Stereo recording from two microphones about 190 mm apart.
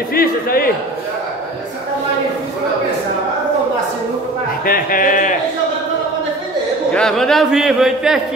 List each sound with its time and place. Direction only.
0.1 s speech: 50° left (ahead or behind)
4.6 s speech: 45° left (ahead or behind)
6.9 s a man's voice: 5° left (ahead or behind)